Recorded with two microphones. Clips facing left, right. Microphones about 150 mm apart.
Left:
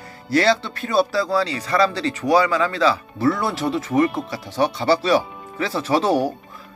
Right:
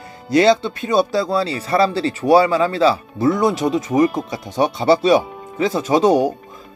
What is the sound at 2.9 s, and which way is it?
Speech, 20° right (ahead or behind).